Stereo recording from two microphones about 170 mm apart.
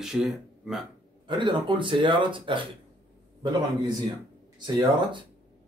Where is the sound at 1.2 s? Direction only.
30° right (ahead or behind).